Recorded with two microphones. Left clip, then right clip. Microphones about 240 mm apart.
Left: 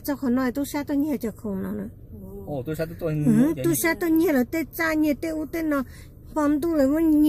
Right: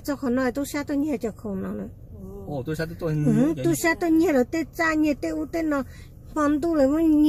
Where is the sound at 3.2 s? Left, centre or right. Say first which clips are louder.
Left 1 dB; left.